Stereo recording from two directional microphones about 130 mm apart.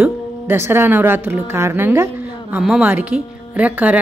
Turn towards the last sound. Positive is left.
turn(degrees=-10)  # may be behind; listen again after turning